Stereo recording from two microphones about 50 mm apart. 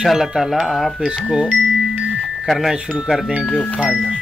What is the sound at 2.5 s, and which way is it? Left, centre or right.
Speech, centre.